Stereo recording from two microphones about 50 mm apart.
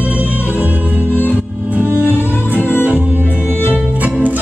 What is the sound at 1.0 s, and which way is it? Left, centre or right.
Music, left.